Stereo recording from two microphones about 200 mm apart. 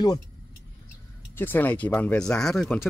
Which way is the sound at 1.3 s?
10° left (ahead or behind).